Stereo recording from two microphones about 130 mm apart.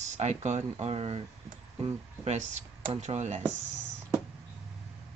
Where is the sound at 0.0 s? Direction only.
60° right (ahead or behind).